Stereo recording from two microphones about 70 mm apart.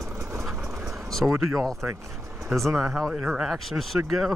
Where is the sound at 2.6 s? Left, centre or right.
Centre.